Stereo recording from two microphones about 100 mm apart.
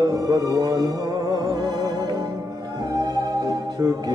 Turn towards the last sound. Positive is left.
turn(degrees=-35)  # may be behind; listen again after turning